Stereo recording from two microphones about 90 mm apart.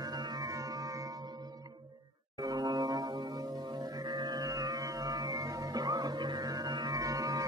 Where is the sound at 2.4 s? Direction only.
45° right (ahead or behind).